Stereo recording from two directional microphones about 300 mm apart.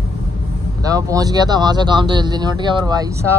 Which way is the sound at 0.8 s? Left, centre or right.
Centre.